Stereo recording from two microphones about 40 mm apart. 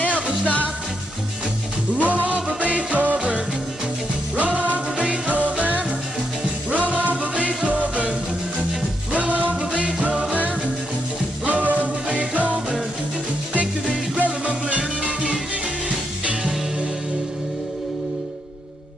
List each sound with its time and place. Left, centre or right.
2.0 s music: right
4.4 s music: right
9.1 s music: right
11.4 s music: right
14.1 s music: right